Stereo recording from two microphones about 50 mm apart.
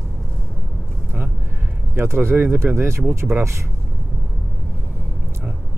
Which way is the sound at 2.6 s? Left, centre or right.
Right.